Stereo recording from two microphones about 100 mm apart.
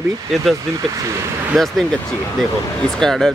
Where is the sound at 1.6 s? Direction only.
Centre (ahead or behind).